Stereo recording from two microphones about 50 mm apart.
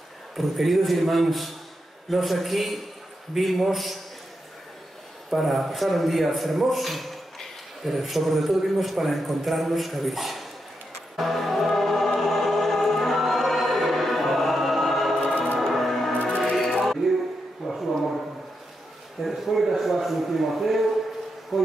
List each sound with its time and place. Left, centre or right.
0.4 s a man's voice: centre
5.3 s a man's voice: centre
11.1 s music: centre
15.6 s music: centre
16.1 s music: centre
17.0 s a sound: centre
19.2 s a sound: centre